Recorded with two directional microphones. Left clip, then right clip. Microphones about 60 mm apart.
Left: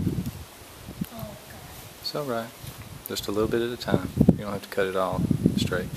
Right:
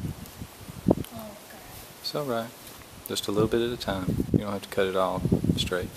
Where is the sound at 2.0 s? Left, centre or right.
Right.